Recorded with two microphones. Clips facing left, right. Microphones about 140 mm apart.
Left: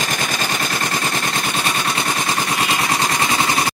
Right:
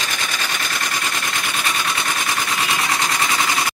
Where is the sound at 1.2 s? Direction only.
30° left (ahead or behind).